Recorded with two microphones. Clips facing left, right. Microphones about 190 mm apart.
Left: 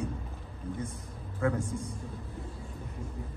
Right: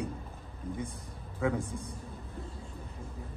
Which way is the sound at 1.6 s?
35° right (ahead or behind).